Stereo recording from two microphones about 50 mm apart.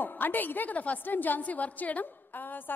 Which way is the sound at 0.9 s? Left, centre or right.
Left.